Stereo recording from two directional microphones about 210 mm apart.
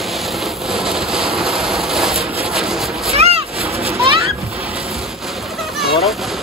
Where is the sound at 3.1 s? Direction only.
30° right (ahead or behind).